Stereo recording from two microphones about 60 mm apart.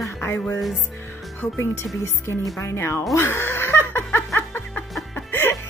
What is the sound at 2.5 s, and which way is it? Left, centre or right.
Speech, left.